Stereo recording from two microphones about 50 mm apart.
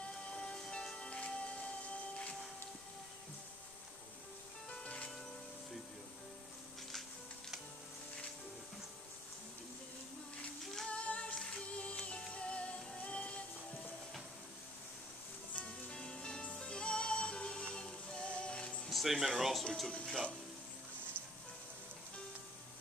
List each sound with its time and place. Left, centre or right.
0.3 s music: centre
4.6 s music: left
10.6 s female singing: centre
10.9 s female singing: left
11.3 s music: left
15.5 s music: centre
18.9 s speech: centre
19.6 s speech: centre